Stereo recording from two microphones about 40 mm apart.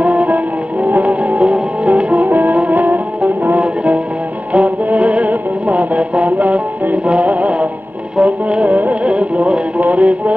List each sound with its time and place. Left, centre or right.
0.0 s music: right